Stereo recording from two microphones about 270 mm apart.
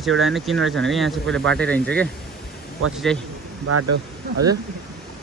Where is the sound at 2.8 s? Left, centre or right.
Right.